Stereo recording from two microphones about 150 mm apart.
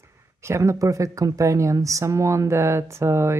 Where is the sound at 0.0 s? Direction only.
20° right (ahead or behind).